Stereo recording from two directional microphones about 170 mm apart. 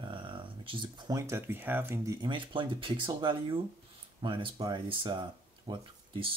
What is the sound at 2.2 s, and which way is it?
Speech, 30° right (ahead or behind).